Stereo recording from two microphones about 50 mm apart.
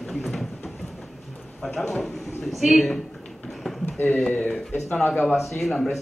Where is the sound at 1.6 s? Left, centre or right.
Centre.